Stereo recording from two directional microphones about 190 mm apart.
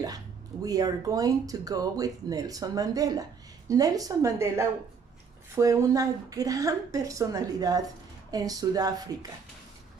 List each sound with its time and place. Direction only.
0.7 s a woman's voice: 20° right (ahead or behind)